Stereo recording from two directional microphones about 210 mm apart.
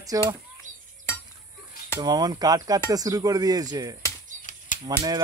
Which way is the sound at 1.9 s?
20° right (ahead or behind).